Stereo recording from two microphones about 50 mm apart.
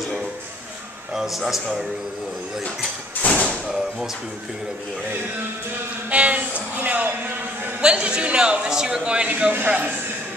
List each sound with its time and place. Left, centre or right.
1.1 s a man's voice: centre
3.2 s thump: left
3.6 s speech: centre
6.0 s a man's voice: right